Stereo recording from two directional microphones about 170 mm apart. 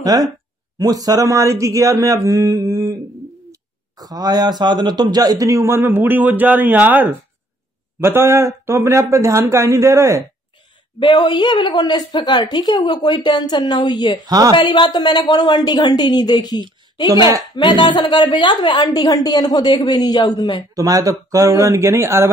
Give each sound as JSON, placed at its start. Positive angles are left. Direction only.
{"t": 0.0, "sound": "a man's voice", "side_deg": -20}
{"t": 11.0, "sound": "a woman's voice", "side_deg": 25}
{"t": 14.2, "sound": "speech", "side_deg": -20}
{"t": 14.6, "sound": "a woman's voice", "side_deg": 25}
{"t": 20.7, "sound": "speech", "side_deg": -20}